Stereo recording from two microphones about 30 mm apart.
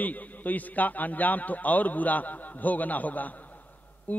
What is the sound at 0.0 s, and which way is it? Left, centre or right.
A man's voice, left.